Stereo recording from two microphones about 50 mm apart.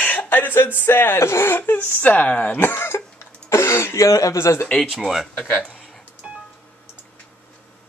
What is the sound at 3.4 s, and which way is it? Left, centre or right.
Speech, left.